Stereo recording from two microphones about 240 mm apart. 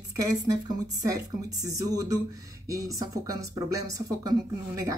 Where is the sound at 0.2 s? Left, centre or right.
Centre.